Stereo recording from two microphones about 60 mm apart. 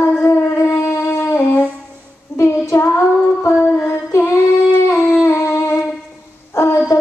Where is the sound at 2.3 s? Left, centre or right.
Left.